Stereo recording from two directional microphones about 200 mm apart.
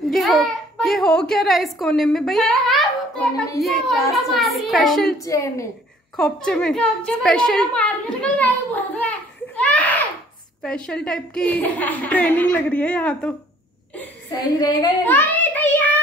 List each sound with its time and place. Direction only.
0.1 s a child's voice: centre (ahead or behind)
5.2 s a woman's voice: 15° left (ahead or behind)
6.1 s a woman's voice: 5° left (ahead or behind)
9.6 s a sound: 5° left (ahead or behind)
10.6 s a woman's voice: 5° left (ahead or behind)
14.6 s child singing: 20° left (ahead or behind)